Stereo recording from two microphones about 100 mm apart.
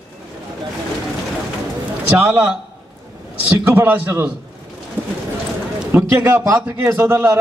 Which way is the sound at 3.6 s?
20° right (ahead or behind).